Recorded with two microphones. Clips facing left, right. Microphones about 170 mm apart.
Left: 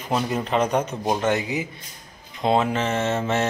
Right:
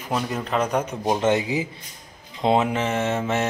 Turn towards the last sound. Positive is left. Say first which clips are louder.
# even
turn(degrees=-10)  # may be behind; listen again after turning